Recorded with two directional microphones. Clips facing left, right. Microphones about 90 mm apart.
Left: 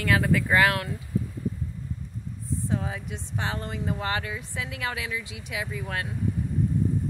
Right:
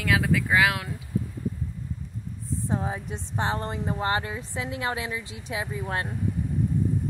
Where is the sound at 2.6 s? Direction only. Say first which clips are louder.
Right 2 dB; 30° right (ahead or behind).